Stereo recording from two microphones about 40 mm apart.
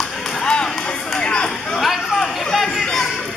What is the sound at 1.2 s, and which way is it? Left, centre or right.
Chatter, left.